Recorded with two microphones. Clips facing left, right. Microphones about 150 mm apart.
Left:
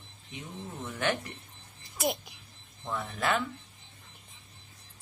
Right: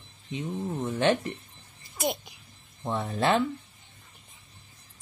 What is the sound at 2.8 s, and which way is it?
Speech, 30° right (ahead or behind).